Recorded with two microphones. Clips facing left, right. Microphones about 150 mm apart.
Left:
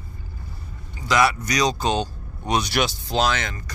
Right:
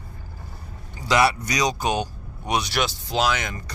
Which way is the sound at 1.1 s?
30° right (ahead or behind).